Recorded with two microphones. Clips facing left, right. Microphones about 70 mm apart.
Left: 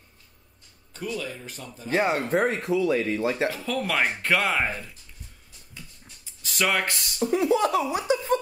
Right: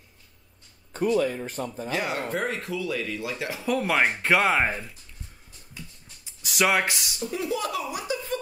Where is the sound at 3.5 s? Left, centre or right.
Centre.